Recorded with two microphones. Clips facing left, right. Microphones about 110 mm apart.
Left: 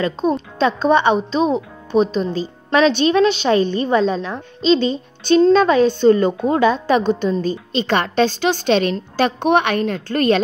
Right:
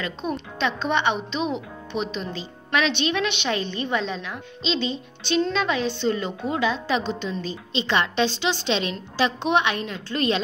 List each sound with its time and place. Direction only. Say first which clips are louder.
0.0 s a woman's voice: left 10 dB; 35° left (ahead or behind)